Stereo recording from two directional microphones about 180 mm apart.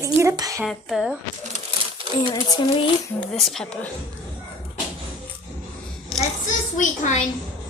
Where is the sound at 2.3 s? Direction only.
25° left (ahead or behind).